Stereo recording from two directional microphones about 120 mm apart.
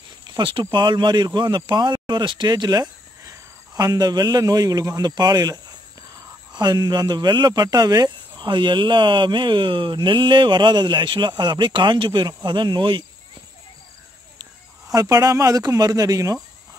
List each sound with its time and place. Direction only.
0.4 s speech: 40° right (ahead or behind)
14.4 s speech: 30° right (ahead or behind)